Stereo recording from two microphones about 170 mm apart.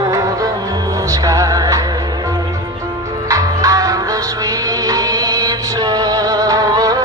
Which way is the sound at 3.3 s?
20° right (ahead or behind).